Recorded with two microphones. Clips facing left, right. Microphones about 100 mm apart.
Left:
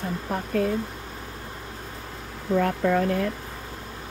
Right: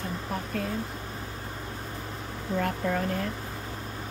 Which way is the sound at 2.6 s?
60° left (ahead or behind).